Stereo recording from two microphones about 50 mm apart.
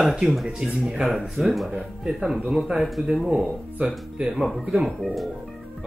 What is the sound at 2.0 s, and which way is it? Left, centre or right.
Speech, centre.